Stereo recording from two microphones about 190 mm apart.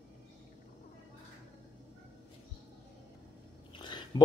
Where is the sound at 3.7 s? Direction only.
25° left (ahead or behind).